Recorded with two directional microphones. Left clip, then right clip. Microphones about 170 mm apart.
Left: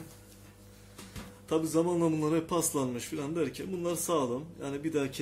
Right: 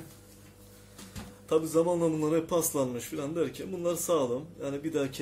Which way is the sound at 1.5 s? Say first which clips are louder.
Right 3 dB; 45° left (ahead or behind).